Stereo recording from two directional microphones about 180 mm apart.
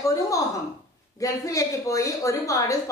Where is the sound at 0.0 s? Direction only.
20° left (ahead or behind).